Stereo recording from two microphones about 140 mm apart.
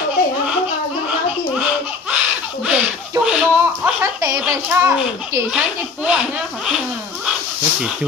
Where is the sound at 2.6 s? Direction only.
5° right (ahead or behind).